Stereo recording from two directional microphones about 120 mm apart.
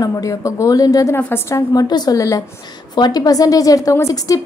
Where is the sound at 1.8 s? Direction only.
35° left (ahead or behind).